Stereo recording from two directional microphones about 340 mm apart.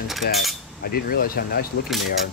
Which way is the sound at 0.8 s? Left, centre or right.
Left.